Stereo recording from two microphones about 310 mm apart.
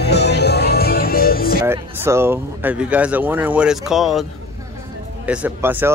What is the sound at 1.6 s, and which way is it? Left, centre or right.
Speech, centre.